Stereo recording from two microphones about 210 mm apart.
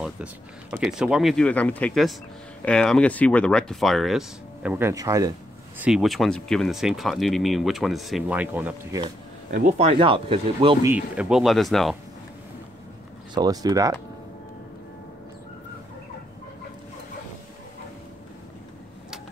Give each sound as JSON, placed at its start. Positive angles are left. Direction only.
{"t": 0.0, "sound": "speech", "side_deg": -5}
{"t": 5.8, "sound": "speech", "side_deg": -5}
{"t": 9.5, "sound": "speech", "side_deg": -40}
{"t": 9.8, "sound": "speech", "side_deg": -25}
{"t": 11.1, "sound": "speech", "side_deg": -5}
{"t": 13.3, "sound": "speech", "side_deg": -20}